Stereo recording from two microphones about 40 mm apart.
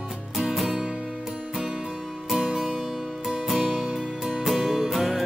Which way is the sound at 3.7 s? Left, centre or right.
Centre.